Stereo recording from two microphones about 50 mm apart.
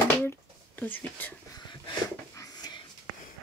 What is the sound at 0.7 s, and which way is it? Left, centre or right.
Speech, left.